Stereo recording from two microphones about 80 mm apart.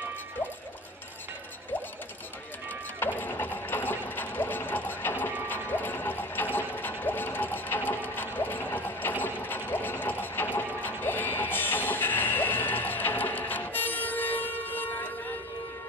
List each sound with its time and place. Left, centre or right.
3.0 s sewing machine: left